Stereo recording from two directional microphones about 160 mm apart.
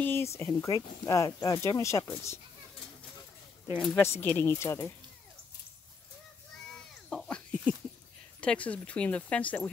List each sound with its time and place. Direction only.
0.0 s speech: 15° left (ahead or behind)
3.7 s speech: 5° left (ahead or behind)
4.4 s speech: 15° left (ahead or behind)
7.1 s a sound: 5° left (ahead or behind)
8.4 s speech: 10° left (ahead or behind)